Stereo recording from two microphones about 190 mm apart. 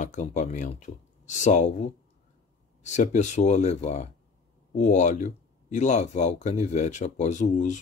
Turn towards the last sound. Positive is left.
turn(degrees=40)  # may be behind; listen again after turning